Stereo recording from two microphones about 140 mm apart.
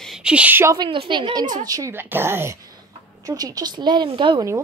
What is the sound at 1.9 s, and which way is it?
Speech, 15° right (ahead or behind).